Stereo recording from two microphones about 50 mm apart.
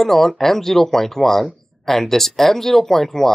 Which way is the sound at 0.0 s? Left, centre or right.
Centre.